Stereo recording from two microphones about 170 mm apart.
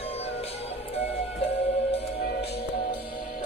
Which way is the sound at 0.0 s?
35° left (ahead or behind).